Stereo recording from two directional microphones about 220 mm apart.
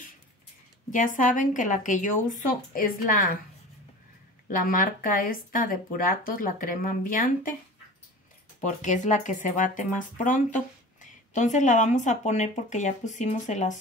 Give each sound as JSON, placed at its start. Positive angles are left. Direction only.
{"t": 0.8, "sound": "speech", "side_deg": 35}
{"t": 4.5, "sound": "speech", "side_deg": 40}
{"t": 8.5, "sound": "speech", "side_deg": 35}